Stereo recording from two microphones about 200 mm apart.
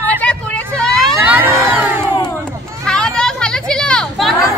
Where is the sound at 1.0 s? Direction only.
5° right (ahead or behind).